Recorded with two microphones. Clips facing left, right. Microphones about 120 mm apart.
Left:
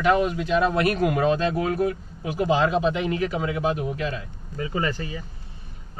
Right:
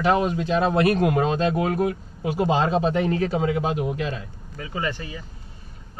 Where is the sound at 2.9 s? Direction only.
40° right (ahead or behind).